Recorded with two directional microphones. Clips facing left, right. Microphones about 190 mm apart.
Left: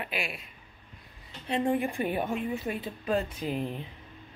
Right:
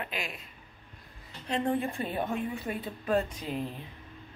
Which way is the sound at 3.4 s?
20° left (ahead or behind).